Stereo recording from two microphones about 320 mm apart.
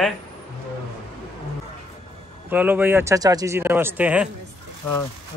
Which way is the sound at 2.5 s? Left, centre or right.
Centre.